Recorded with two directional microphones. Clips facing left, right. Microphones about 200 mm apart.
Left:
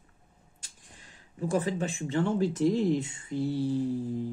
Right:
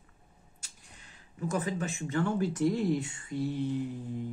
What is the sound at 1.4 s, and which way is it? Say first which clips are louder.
Speech: left 4 dB; 30° left (ahead or behind).